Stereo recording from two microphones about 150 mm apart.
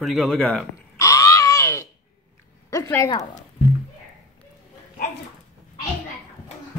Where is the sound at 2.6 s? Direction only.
20° left (ahead or behind).